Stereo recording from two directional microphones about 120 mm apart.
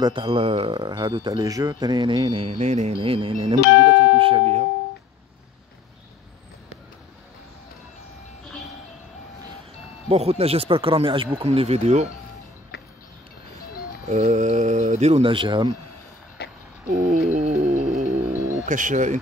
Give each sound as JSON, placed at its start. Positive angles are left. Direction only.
{"t": 0.0, "sound": "speech", "side_deg": -45}
{"t": 2.3, "sound": "speech", "side_deg": -50}
{"t": 3.0, "sound": "speech", "side_deg": -50}
{"t": 10.0, "sound": "speech", "side_deg": -55}
{"t": 11.4, "sound": "speech", "side_deg": -55}
{"t": 14.0, "sound": "speech", "side_deg": -70}
{"t": 15.2, "sound": "speech", "side_deg": -45}
{"t": 17.3, "sound": "music", "side_deg": -70}
{"t": 18.2, "sound": "bird", "side_deg": -25}
{"t": 18.5, "sound": "speech", "side_deg": -90}